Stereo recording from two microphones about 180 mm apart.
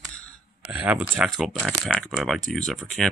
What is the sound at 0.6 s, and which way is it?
Speech, 10° right (ahead or behind).